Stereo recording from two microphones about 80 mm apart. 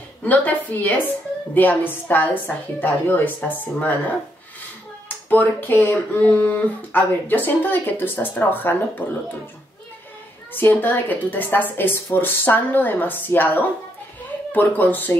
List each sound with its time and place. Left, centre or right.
0.2 s a woman's voice: left
10.5 s a woman's voice: left